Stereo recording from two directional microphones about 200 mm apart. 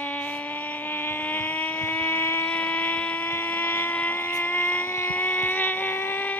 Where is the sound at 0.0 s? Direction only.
10° left (ahead or behind).